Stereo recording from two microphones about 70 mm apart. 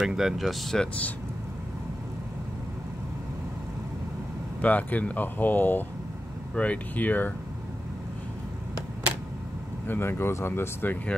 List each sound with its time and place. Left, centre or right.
0.0 s speech: centre
4.6 s speech: left
9.8 s speech: left